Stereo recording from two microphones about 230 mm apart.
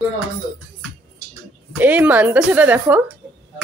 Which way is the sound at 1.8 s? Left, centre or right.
Centre.